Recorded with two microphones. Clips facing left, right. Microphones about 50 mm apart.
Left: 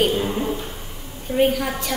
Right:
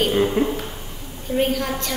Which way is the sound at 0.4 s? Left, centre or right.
Right.